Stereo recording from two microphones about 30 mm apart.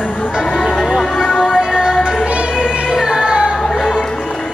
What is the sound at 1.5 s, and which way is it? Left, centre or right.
Music, right.